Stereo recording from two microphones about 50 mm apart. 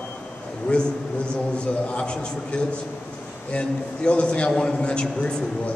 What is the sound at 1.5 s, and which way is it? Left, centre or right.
A man's voice, left.